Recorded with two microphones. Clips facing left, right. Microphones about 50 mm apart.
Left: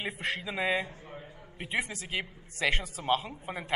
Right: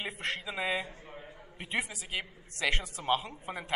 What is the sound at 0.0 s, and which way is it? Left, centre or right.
A man's voice, centre.